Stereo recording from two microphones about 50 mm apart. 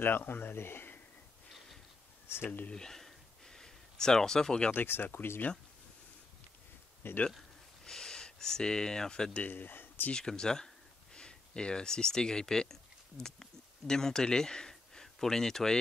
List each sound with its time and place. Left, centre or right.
0.0 s speech: left
2.2 s speech: left
2.7 s a sound: centre
4.8 s speech: left
7.0 s speech: left
7.8 s speech: centre
9.4 s speech: left
10.1 s speech: centre